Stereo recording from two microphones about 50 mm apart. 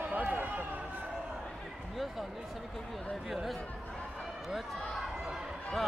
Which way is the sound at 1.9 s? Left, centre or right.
Centre.